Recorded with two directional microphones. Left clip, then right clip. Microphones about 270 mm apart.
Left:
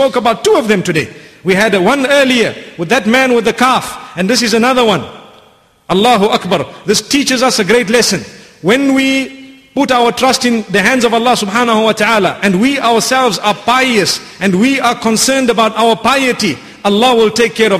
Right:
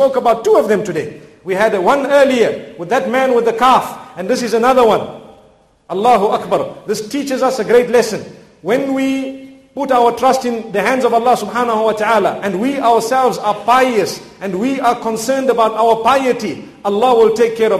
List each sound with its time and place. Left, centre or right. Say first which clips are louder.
0.0 s a man's voice: left 1 dB; left